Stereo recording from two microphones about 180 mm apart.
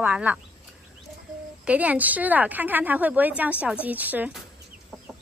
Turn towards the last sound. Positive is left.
turn(degrees=-10)  # may be behind; listen again after turning